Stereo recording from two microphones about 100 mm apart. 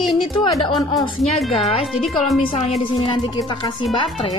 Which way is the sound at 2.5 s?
90° left.